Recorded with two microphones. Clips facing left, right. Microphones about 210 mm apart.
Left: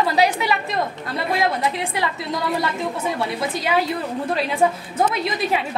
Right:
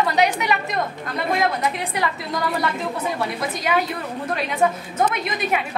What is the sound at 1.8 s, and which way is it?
Speech, 25° left (ahead or behind).